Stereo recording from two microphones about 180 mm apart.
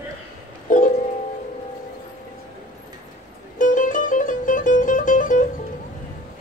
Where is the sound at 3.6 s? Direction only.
45° left (ahead or behind).